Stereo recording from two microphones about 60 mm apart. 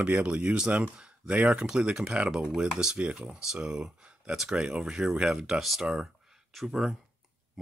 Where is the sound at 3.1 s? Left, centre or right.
Centre.